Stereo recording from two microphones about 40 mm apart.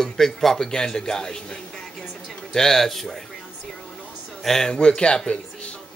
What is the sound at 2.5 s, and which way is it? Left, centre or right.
Speech, centre.